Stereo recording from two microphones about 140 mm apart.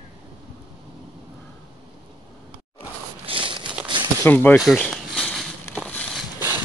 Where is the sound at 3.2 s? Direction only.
40° right (ahead or behind).